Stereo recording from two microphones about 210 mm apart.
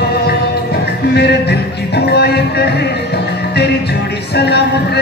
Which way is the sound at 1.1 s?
50° left (ahead or behind).